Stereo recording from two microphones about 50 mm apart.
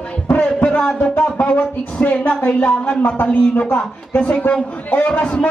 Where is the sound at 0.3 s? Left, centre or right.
Left.